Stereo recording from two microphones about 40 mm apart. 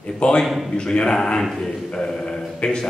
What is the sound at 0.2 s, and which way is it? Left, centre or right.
Speech, left.